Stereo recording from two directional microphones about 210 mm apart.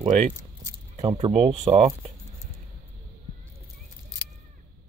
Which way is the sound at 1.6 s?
30° right (ahead or behind).